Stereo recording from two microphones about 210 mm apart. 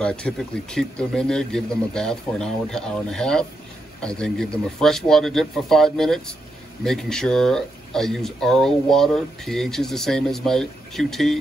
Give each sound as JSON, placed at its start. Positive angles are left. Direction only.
{"t": 0.0, "sound": "speech", "side_deg": 5}